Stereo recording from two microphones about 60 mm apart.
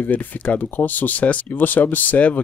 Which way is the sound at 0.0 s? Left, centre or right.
Left.